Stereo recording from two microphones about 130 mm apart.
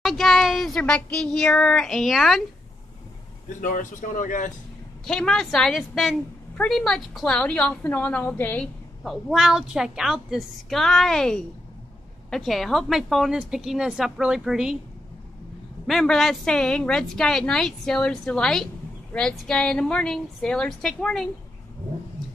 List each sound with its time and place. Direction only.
0.0 s speech: centre (ahead or behind)
3.6 s speech: 90° left
5.0 s a woman's voice: 5° left (ahead or behind)
9.0 s a woman's voice: centre (ahead or behind)
15.9 s a woman's voice: 5° left (ahead or behind)